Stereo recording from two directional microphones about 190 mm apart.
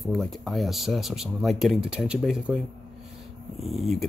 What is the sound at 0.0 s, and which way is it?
Speech, centre (ahead or behind).